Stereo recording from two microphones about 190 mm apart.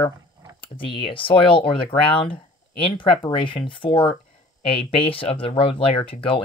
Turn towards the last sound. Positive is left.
turn(degrees=30)  # may be behind; listen again after turning